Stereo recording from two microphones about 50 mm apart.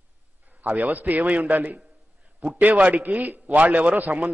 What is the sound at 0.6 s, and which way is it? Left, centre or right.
A man's voice, right.